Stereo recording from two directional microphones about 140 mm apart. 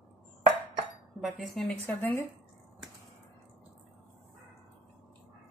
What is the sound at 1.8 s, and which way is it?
Speech, 15° left (ahead or behind).